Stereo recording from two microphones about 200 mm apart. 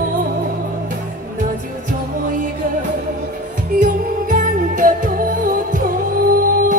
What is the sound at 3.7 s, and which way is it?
Music, 40° right (ahead or behind).